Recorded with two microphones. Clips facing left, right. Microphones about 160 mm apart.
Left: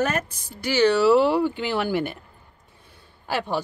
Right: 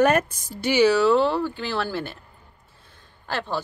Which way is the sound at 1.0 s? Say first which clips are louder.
Left 2 dB; 10° left (ahead or behind).